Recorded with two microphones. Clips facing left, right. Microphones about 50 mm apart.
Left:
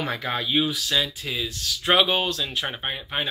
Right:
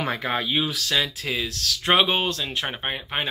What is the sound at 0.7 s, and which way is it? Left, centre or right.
Speech, right.